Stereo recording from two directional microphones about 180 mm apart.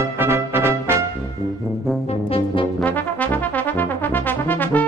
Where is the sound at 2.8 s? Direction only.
10° left (ahead or behind).